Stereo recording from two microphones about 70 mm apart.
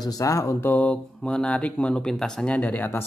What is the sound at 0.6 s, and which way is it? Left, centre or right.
Speech, left.